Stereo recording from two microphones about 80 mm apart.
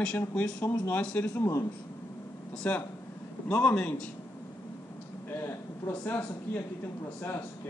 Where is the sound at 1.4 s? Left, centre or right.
Left.